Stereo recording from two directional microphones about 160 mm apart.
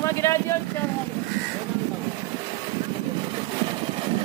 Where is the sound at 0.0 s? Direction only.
20° left (ahead or behind).